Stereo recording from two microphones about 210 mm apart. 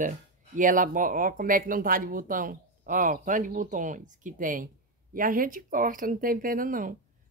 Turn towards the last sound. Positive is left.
turn(degrees=-40)  # may be behind; listen again after turning